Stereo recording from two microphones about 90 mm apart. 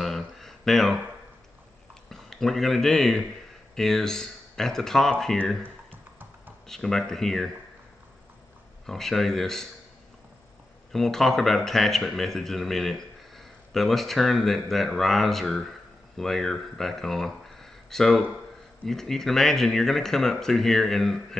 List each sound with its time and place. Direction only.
0.0 s a sound: 5° left (ahead or behind)
2.0 s speech: 5° left (ahead or behind)
5.9 s a sound: 20° right (ahead or behind)
6.7 s speech: 5° left (ahead or behind)
8.8 s speech: 5° left (ahead or behind)
10.9 s speech: 5° left (ahead or behind)